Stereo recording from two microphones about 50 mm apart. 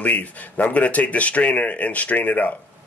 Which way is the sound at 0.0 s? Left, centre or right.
Left.